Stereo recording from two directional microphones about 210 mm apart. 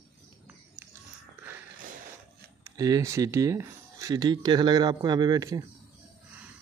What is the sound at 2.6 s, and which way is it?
Speech, 15° right (ahead or behind).